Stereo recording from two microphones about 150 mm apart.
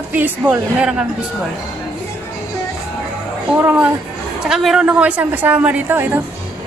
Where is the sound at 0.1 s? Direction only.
10° right (ahead or behind).